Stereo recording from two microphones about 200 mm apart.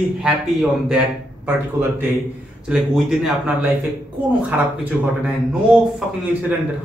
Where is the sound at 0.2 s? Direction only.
Centre (ahead or behind).